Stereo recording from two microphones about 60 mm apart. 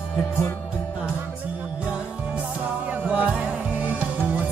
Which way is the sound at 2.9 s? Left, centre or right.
Right.